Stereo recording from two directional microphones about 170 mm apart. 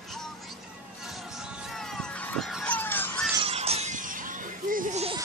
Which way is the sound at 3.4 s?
35° right (ahead or behind).